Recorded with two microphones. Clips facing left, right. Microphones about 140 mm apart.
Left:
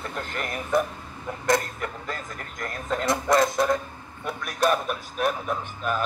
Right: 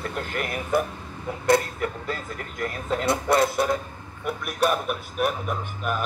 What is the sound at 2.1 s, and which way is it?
Speech, 40° left (ahead or behind).